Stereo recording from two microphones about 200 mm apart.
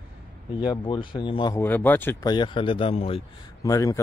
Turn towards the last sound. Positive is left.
turn(degrees=15)  # may be behind; listen again after turning